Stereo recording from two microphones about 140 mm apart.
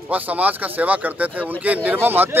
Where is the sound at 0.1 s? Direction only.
10° right (ahead or behind).